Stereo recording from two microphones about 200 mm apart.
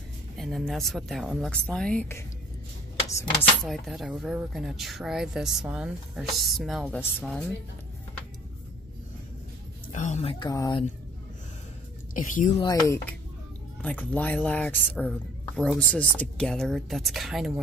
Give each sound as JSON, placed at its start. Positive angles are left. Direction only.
{"t": 0.4, "sound": "a woman's voice", "side_deg": 0}
{"t": 3.6, "sound": "a woman's voice", "side_deg": 0}
{"t": 9.9, "sound": "a woman's voice", "side_deg": 35}
{"t": 10.4, "sound": "a woman's voice", "side_deg": 20}
{"t": 12.1, "sound": "speech", "side_deg": 40}
{"t": 12.5, "sound": "a woman's voice", "side_deg": 20}